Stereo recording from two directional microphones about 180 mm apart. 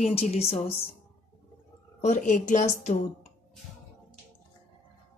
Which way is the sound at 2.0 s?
45° left (ahead or behind).